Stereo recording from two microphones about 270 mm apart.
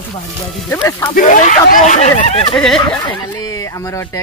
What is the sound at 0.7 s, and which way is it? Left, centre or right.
Speech, centre.